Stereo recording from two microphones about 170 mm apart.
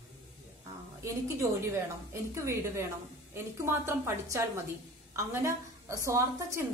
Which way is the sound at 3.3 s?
15° right (ahead or behind).